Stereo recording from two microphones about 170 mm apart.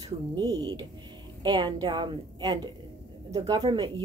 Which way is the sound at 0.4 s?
25° right (ahead or behind).